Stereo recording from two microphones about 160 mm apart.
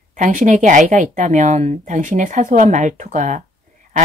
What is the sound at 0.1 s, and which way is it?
Speech, 55° right (ahead or behind).